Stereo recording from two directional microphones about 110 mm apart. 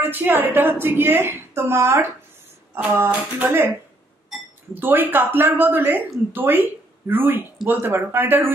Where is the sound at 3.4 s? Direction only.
20° right (ahead or behind).